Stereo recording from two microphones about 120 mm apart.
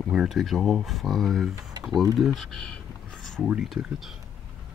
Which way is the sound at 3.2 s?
Centre (ahead or behind).